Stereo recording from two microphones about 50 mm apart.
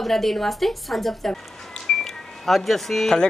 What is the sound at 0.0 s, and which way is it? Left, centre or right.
A woman's voice, centre.